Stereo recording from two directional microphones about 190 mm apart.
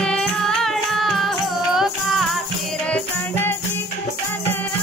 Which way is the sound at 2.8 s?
10° left (ahead or behind).